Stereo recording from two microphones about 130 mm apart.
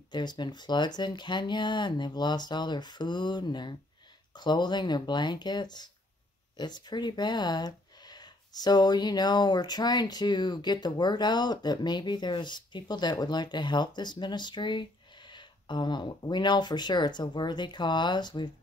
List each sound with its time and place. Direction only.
0.1 s speech: 35° left (ahead or behind)